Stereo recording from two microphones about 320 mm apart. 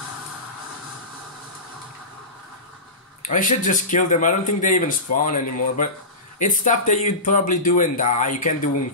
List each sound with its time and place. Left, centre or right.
3.2 s speech: left